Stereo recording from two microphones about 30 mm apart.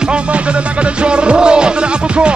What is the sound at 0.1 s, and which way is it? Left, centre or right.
Music, right.